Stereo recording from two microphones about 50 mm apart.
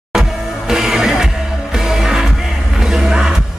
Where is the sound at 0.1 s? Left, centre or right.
Centre.